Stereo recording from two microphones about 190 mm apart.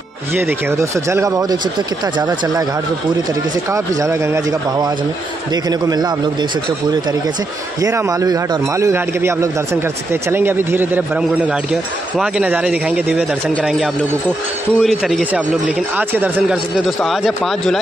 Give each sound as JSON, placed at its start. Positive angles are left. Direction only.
{"t": 0.7, "sound": "a man's voice", "side_deg": -15}
{"t": 3.7, "sound": "a man's voice", "side_deg": -15}
{"t": 5.7, "sound": "a man's voice", "side_deg": -20}
{"t": 7.8, "sound": "a man's voice", "side_deg": -15}
{"t": 14.8, "sound": "speech", "side_deg": 0}